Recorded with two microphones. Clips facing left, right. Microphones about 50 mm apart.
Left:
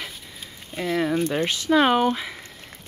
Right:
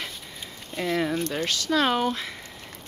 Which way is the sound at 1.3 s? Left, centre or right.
Centre.